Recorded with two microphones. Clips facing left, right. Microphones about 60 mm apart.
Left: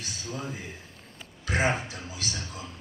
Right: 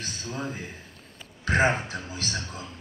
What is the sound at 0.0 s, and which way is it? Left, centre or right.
A man's voice, right.